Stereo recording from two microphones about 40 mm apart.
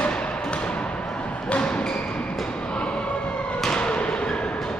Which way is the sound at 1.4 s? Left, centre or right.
Left.